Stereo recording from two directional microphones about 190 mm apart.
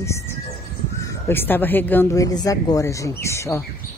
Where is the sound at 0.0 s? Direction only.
15° left (ahead or behind).